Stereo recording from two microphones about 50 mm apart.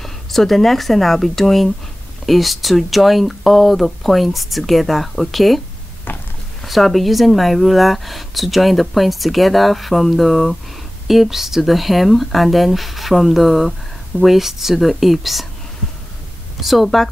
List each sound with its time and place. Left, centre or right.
0.0 s speech: centre
6.1 s a sound: left
6.6 s speech: centre
16.6 s speech: centre